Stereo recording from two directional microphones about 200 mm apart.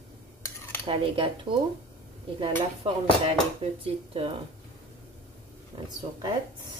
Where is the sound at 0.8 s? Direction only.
25° right (ahead or behind).